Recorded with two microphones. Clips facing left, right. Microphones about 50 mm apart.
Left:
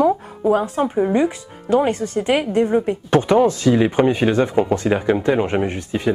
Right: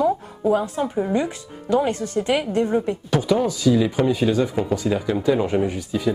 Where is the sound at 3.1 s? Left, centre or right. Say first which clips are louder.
Left 7 dB; left.